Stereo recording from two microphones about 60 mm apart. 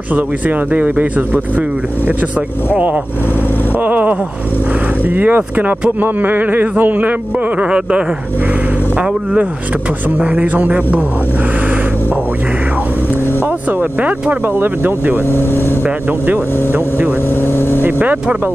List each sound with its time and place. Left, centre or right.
0.1 s speech: right
2.7 s speech: right
13.7 s speech: right
14.4 s speech: right
15.2 s speech: left
15.8 s speech: right
17.4 s speech: left
17.8 s speech: right